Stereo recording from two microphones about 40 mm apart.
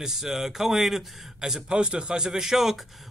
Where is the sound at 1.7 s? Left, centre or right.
Right.